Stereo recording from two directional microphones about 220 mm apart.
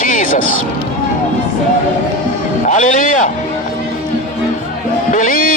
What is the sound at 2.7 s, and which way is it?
Speech, 35° left (ahead or behind).